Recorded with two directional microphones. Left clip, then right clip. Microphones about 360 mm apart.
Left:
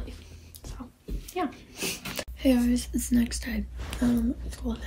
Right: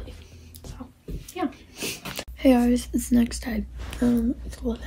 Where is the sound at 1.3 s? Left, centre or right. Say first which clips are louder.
Right 1 dB; centre.